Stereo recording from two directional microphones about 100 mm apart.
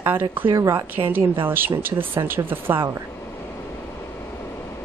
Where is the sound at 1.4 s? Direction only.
20° right (ahead or behind).